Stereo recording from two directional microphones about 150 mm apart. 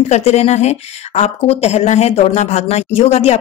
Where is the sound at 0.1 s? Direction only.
45° left (ahead or behind).